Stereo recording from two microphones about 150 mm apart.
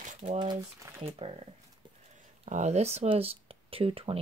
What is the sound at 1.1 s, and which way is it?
Speech, 40° right (ahead or behind).